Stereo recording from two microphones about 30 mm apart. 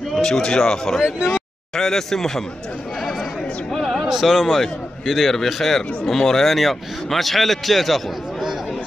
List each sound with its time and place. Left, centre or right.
0.1 s a sound: centre
0.6 s speech: centre
3.7 s speech: centre
4.0 s a man's voice: centre